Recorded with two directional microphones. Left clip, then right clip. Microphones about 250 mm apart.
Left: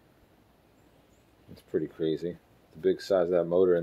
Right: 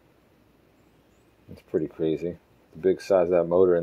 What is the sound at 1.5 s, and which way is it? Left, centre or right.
Speech, centre.